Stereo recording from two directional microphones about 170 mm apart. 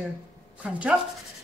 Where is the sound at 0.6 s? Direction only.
5° right (ahead or behind).